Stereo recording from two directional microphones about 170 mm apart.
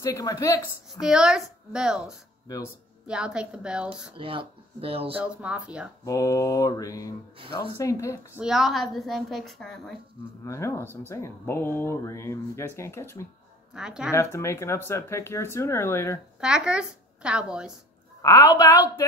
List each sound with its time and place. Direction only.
0.0 s mantra: 20° left (ahead or behind)
0.9 s a woman's voice: 5° right (ahead or behind)
4.2 s speech: 30° right (ahead or behind)
5.1 s speech: 5° right (ahead or behind)
6.0 s mantra: 20° left (ahead or behind)
7.7 s speech: 20° left (ahead or behind)
8.4 s a woman's voice: 5° right (ahead or behind)
10.4 s speech: 15° left (ahead or behind)
13.7 s a woman's voice: 5° right (ahead or behind)
14.1 s speech: 15° left (ahead or behind)
16.3 s a woman's voice: 5° right (ahead or behind)
18.2 s mantra: 20° left (ahead or behind)